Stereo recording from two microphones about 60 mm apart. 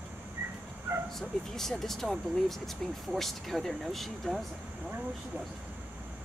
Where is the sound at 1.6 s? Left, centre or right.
Centre.